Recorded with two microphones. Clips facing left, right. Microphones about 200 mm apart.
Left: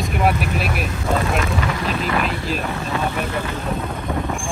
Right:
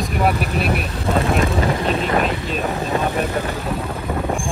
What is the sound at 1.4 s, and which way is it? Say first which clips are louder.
Speech: right 4 dB; 30° right (ahead or behind).